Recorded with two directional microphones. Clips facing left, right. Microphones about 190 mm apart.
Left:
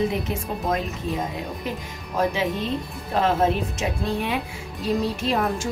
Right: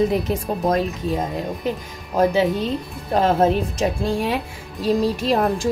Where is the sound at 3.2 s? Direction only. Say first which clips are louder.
Right 3 dB; 40° right (ahead or behind).